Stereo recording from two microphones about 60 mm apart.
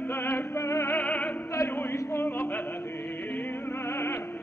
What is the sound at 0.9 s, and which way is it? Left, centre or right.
Opera, left.